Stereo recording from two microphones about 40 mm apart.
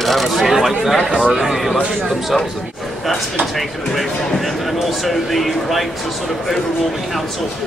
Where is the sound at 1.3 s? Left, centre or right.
Centre.